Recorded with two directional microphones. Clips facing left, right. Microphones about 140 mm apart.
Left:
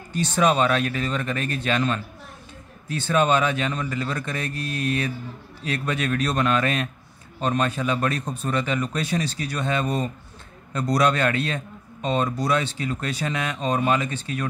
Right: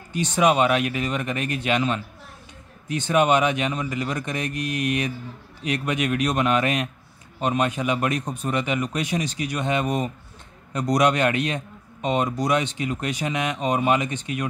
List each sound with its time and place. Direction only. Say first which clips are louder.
0.1 s a man's voice: right 1 dB; 15° right (ahead or behind)